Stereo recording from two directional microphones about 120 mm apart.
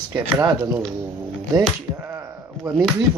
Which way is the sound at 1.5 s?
25° right (ahead or behind).